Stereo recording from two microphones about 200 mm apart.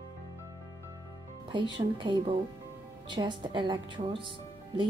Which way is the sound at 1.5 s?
25° right (ahead or behind).